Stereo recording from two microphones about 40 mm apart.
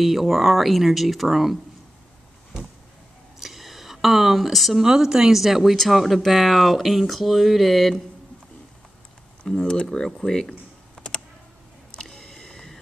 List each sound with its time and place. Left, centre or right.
0.0 s speech: centre
3.3 s a sound: centre
4.8 s speech: centre
9.4 s speech: centre
11.0 s computer keyboard: left
12.0 s a sound: centre